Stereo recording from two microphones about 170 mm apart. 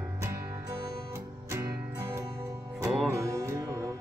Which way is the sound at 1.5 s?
15° right (ahead or behind).